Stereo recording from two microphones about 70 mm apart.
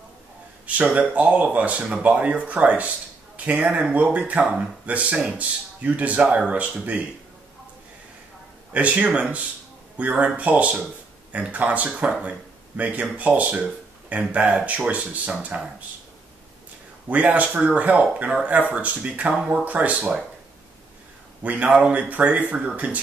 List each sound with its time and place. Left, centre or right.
0.9 s speech: centre
8.7 s speech: right
17.1 s speech: right
21.4 s speech: right